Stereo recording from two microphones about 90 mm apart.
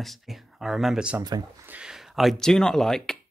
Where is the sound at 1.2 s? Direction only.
45° right (ahead or behind).